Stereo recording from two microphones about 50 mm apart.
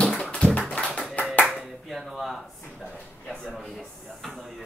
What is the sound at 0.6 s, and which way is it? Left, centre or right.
Clapping, centre.